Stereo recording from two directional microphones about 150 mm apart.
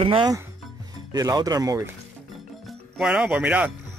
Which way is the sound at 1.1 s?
25° right (ahead or behind).